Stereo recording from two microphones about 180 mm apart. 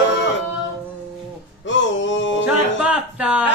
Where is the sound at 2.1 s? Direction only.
85° left.